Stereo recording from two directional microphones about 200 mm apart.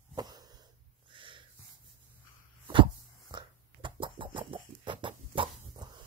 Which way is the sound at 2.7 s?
25° right (ahead or behind).